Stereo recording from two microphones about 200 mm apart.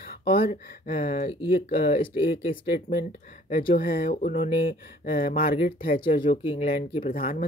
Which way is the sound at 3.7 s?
45° left (ahead or behind).